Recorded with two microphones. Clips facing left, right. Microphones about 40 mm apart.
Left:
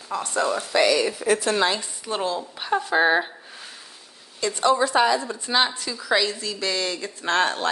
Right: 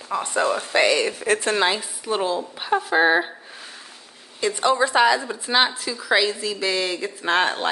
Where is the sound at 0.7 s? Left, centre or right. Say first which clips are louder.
Even; right.